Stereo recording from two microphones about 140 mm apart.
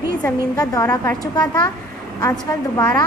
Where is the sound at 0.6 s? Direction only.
25° left (ahead or behind).